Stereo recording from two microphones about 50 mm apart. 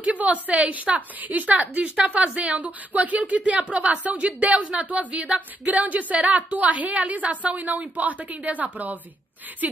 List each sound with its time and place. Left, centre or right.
0.0 s a woman's voice: right